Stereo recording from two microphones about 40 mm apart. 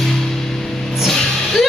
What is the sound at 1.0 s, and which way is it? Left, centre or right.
Music, centre.